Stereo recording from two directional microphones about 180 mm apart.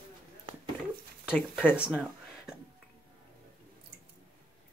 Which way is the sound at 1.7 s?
5° right (ahead or behind).